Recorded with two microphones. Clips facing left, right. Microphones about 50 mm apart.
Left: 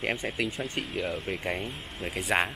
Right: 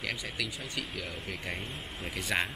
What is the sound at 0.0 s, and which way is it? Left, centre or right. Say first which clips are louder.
Speech: left 6 dB; left.